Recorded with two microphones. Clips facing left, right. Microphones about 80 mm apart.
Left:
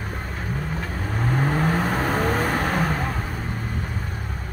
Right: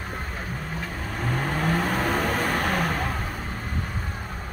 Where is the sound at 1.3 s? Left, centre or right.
Centre.